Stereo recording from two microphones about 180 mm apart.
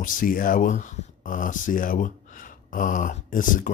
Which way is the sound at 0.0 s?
50° left (ahead or behind).